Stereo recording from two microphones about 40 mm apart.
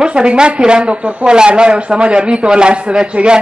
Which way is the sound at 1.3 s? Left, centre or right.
Right.